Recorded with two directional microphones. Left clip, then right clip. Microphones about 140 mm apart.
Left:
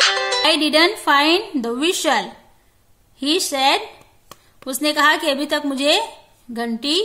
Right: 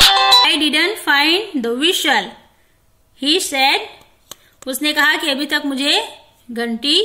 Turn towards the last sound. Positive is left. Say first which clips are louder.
# right 4 dB
turn(degrees=30)  # may be behind; listen again after turning